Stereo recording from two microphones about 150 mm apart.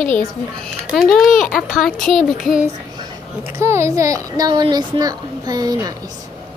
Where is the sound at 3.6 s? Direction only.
15° right (ahead or behind).